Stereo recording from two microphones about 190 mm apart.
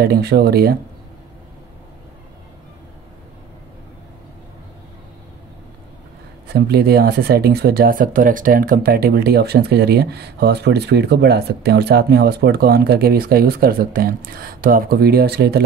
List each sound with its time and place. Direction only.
0.0 s speech: 55° right (ahead or behind)
6.5 s speech: 55° right (ahead or behind)